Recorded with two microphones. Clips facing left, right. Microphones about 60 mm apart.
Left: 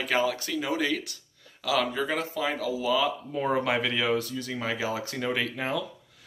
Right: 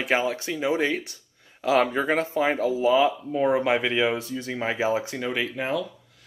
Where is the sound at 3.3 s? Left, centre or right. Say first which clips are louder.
Right 4 dB; centre; by 5.0 s right.